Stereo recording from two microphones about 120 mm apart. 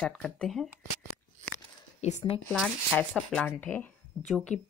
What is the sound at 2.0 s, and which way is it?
Speech, 70° left (ahead or behind).